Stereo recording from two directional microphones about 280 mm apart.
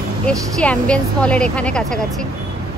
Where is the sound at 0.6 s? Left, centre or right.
Centre.